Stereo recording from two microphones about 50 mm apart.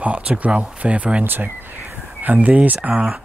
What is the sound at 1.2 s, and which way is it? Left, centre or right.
Speech, right.